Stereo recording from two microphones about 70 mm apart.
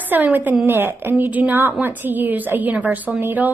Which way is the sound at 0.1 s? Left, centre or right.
Right.